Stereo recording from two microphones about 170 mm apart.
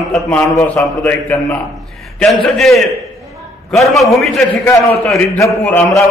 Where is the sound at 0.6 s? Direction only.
15° left (ahead or behind).